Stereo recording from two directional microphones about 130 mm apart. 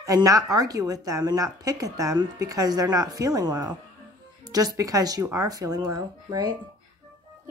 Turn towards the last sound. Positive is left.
turn(degrees=-30)  # may be behind; listen again after turning